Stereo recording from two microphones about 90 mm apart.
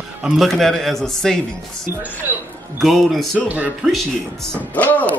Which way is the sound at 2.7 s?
Centre (ahead or behind).